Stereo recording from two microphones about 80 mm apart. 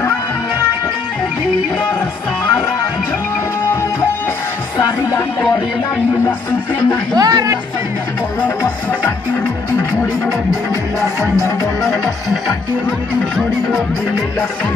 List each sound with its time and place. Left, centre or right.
7.2 s speech: right